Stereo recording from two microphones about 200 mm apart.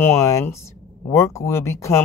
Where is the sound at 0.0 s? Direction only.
15° left (ahead or behind).